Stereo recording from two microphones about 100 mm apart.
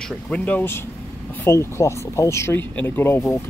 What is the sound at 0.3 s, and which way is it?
Speech, 15° left (ahead or behind).